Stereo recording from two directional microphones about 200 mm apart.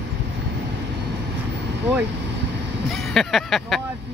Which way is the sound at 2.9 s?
Centre (ahead or behind).